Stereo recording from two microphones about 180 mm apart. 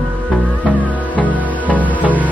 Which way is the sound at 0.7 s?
10° right (ahead or behind).